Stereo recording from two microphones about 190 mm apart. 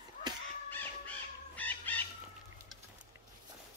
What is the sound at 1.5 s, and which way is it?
Bird, 10° left (ahead or behind).